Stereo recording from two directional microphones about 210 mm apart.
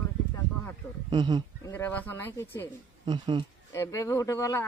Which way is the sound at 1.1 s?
20° right (ahead or behind).